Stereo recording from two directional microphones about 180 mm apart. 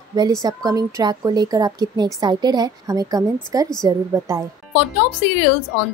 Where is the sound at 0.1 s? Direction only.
20° right (ahead or behind).